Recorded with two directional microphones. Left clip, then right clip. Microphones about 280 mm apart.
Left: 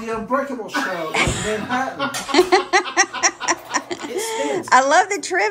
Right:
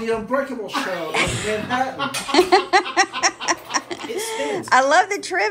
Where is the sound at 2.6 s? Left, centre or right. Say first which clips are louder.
Even; centre.